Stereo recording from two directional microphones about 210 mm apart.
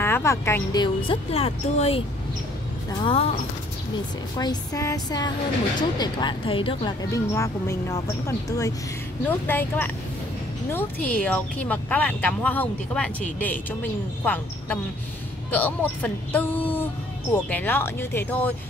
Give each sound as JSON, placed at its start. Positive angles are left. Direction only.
{"t": 0.0, "sound": "speech", "side_deg": 10}
{"t": 1.0, "sound": "speech", "side_deg": 30}
{"t": 4.4, "sound": "speech", "side_deg": 15}